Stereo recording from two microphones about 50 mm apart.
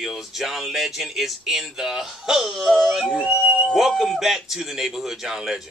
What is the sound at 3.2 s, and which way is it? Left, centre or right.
Speech, right.